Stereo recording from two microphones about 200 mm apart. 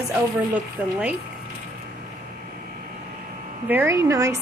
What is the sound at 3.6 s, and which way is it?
Speech, 10° right (ahead or behind).